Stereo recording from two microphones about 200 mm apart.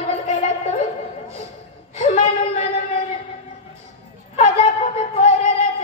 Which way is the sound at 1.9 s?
35° left (ahead or behind).